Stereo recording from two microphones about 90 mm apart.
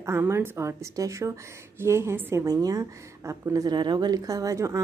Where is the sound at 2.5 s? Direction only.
40° right (ahead or behind).